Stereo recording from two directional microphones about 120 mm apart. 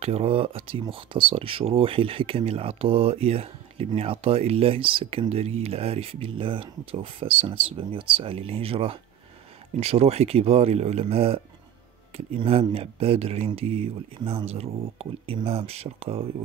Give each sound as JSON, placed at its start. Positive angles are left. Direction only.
{"t": 0.0, "sound": "speech", "side_deg": -55}